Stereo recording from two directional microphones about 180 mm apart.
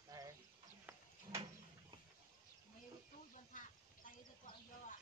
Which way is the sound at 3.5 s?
45° left (ahead or behind).